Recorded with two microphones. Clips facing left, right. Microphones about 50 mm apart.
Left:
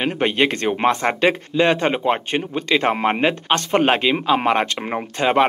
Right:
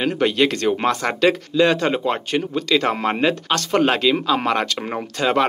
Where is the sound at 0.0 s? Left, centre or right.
Left.